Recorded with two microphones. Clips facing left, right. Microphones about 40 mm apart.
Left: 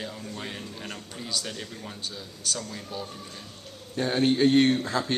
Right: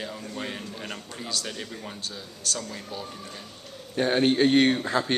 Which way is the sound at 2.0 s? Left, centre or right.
Centre.